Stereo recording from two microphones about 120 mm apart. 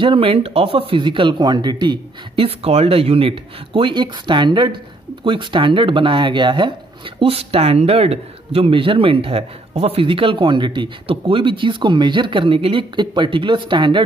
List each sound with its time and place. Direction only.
0.0 s speech: 50° right (ahead or behind)
2.4 s speech: 55° right (ahead or behind)
7.2 s speech: 55° right (ahead or behind)